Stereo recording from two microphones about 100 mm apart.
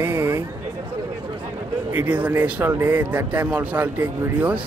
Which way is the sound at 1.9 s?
15° right (ahead or behind).